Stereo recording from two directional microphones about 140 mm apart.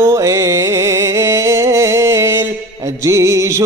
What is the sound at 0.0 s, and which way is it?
Music, 20° right (ahead or behind).